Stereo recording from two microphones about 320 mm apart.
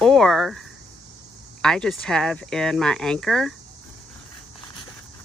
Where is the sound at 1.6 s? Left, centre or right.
Centre.